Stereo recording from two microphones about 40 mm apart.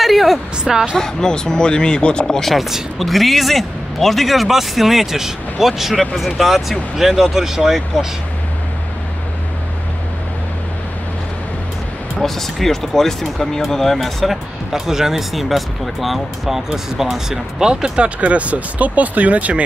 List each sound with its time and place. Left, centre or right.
0.0 s a sound: centre
0.7 s speech: centre
0.9 s speech: centre
2.2 s speech: centre
3.0 s speech: centre
12.2 s speech: centre
14.7 s speech: centre
18.0 s speech: right